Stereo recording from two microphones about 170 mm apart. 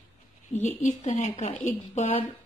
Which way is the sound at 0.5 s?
45° left (ahead or behind).